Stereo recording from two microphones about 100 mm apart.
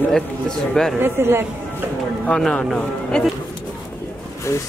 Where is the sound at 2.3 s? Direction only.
5° left (ahead or behind).